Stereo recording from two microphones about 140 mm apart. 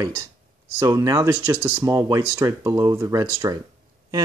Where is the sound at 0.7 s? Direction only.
25° right (ahead or behind).